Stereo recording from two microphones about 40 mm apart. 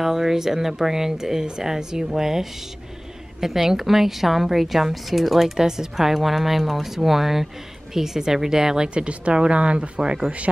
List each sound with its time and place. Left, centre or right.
0.0 s a woman's voice: centre
5.6 s a woman's voice: centre